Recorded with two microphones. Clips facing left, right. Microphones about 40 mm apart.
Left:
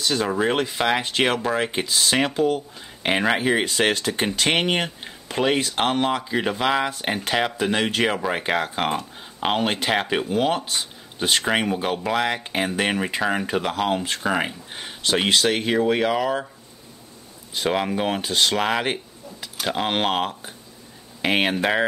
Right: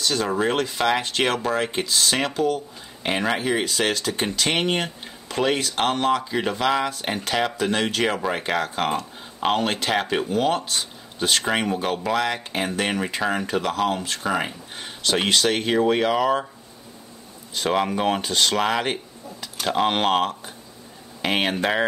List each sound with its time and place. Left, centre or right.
0.0 s speech: centre
17.6 s speech: centre